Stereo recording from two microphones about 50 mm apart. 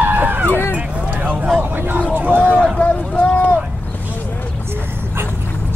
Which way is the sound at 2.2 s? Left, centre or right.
Right.